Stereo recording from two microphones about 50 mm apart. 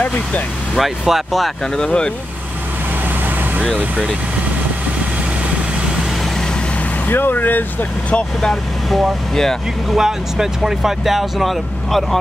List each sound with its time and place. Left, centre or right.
0.7 s speech: centre
1.9 s speech: centre
7.1 s speech: left
8.9 s speech: centre
9.8 s speech: centre